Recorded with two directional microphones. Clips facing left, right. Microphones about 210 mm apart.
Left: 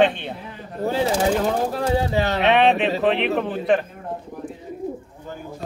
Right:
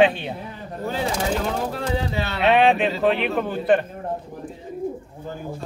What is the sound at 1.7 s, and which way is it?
Speech, 40° left (ahead or behind).